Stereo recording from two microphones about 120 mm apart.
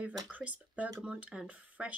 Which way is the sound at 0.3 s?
10° right (ahead or behind).